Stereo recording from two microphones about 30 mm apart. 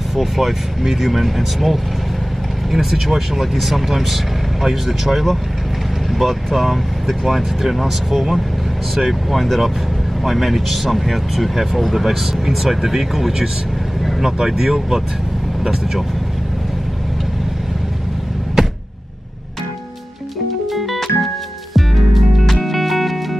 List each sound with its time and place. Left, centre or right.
0.1 s speech: centre
18.6 s a sound: centre
20.6 s music: centre